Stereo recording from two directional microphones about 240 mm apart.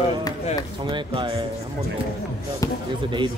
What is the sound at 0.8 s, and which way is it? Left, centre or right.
Speech, centre.